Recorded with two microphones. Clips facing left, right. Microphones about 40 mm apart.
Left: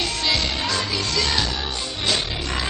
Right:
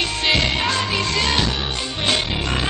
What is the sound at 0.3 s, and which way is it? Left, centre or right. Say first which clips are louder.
Music: right 6 dB; right.